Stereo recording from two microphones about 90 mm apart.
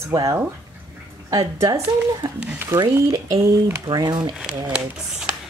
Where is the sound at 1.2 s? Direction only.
40° right (ahead or behind).